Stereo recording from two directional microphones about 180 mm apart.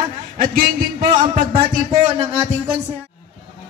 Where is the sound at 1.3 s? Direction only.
35° right (ahead or behind).